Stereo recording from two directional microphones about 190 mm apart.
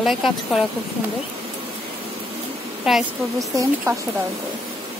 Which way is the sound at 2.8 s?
Centre (ahead or behind).